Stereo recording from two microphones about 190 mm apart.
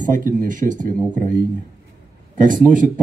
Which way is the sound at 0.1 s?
45° right (ahead or behind).